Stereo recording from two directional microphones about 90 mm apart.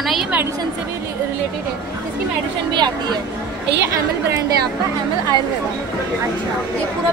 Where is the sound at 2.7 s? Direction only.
55° right (ahead or behind).